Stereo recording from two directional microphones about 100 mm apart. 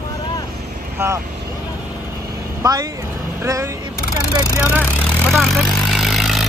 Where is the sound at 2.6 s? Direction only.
40° right (ahead or behind).